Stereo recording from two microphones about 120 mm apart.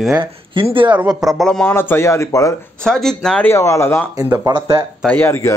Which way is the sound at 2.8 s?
5° left (ahead or behind).